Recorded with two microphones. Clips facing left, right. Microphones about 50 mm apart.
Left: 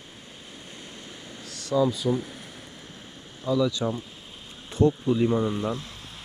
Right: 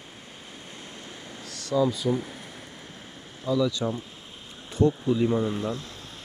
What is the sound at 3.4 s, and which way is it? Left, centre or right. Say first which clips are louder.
Speech: left 1 dB; left.